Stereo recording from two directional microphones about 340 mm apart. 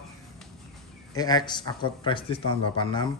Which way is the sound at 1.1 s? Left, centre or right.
Centre.